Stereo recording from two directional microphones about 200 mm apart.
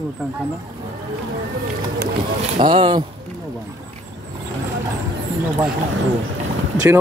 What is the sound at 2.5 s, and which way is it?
Speech, 25° right (ahead or behind).